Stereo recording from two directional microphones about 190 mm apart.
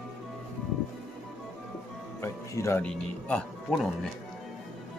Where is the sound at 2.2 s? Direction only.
15° left (ahead or behind).